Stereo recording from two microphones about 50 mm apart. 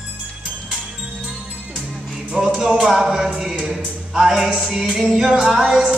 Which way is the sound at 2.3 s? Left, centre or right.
Centre.